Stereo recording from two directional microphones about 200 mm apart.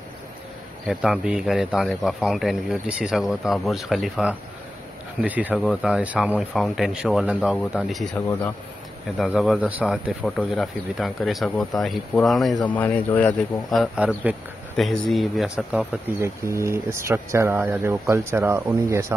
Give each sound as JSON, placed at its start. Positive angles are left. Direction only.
{"t": 0.8, "sound": "speech", "side_deg": -5}
{"t": 8.1, "sound": "speech", "side_deg": 10}
{"t": 9.2, "sound": "speech", "side_deg": 0}